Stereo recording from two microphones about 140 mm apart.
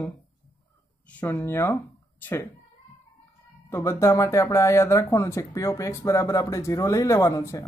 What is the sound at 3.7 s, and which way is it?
Speech, 20° left (ahead or behind).